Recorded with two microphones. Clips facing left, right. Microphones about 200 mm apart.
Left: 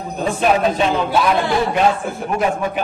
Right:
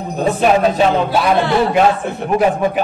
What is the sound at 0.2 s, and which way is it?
Speech, 40° right (ahead or behind).